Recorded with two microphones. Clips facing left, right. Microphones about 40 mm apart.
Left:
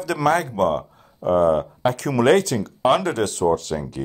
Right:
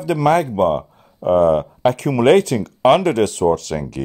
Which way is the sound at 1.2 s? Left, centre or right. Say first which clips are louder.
Right 3 dB; right.